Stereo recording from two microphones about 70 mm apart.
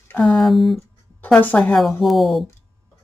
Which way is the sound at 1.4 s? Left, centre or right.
Left.